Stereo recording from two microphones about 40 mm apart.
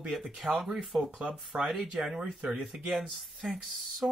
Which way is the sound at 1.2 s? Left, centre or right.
Right.